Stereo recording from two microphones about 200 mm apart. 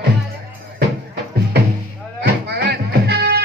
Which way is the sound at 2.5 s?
55° right (ahead or behind).